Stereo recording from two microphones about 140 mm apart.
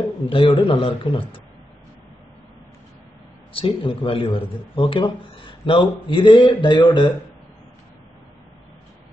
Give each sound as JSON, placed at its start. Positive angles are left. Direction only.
{"t": 0.3, "sound": "speech", "side_deg": 40}
{"t": 3.5, "sound": "speech", "side_deg": 40}